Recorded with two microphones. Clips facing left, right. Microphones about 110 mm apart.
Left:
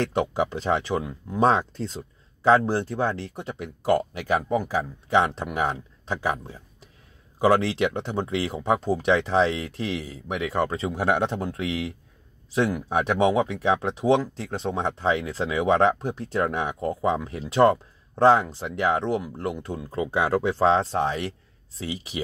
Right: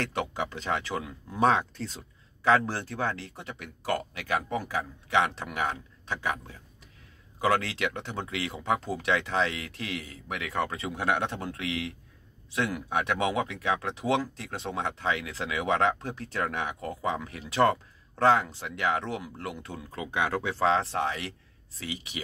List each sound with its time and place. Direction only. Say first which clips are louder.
0.0 s speech: left 7 dB; 25° left (ahead or behind)
15.9 s speech: left 6 dB; 20° left (ahead or behind)